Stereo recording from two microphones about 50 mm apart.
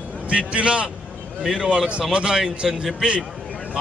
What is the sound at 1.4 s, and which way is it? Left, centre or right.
A man's voice, centre.